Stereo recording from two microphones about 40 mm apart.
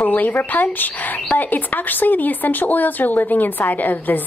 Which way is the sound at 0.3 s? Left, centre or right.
Left.